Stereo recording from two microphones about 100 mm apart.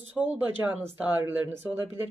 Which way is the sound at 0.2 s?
15° right (ahead or behind).